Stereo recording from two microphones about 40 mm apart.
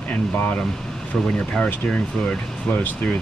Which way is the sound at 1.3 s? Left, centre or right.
Left.